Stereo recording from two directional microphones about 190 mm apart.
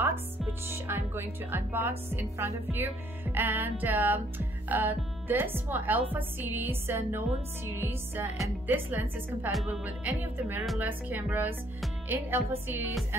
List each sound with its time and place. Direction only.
0.5 s a woman's voice: 10° right (ahead or behind)